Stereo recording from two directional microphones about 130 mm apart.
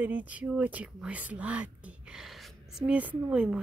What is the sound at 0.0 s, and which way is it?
Speech, 15° right (ahead or behind).